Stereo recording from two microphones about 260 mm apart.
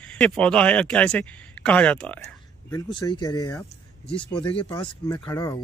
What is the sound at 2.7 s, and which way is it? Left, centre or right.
Speech, centre.